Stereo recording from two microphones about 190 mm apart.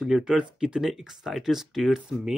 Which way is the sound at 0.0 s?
5° right (ahead or behind).